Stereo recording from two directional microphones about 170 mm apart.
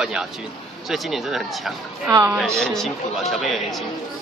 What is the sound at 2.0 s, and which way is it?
Speech, 20° right (ahead or behind).